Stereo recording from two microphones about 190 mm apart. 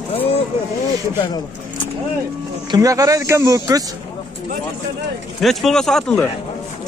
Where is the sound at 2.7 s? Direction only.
20° right (ahead or behind).